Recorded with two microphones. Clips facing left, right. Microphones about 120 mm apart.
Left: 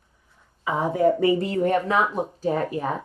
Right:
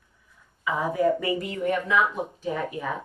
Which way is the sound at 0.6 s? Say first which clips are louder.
Left 3 dB; 25° left (ahead or behind).